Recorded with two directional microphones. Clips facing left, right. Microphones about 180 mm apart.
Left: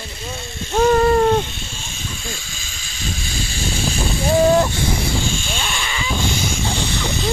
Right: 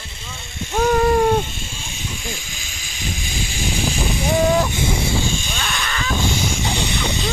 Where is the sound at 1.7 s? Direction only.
15° right (ahead or behind).